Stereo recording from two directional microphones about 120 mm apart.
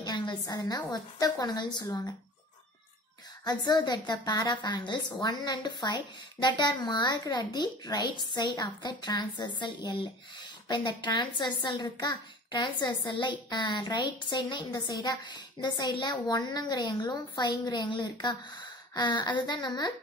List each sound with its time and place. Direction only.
0.0 s speech: 40° left (ahead or behind)
3.4 s speech: 35° left (ahead or behind)